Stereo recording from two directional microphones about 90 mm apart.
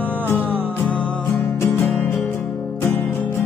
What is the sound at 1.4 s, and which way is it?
Music, 30° left (ahead or behind).